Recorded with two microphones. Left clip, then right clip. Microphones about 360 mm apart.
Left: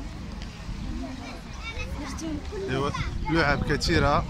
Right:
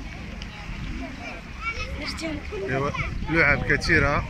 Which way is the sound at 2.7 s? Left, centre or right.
Centre.